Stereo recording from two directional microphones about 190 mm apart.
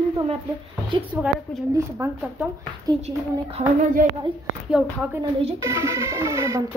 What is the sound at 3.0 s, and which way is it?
Speech, 35° right (ahead or behind).